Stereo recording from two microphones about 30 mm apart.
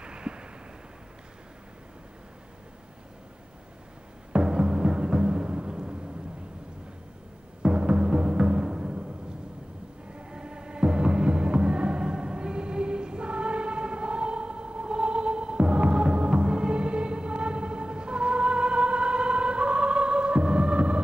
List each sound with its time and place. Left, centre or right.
0.0 s a sound: right
4.5 s music: right
7.6 s music: right
8.7 s timpani: right
10.1 s music: right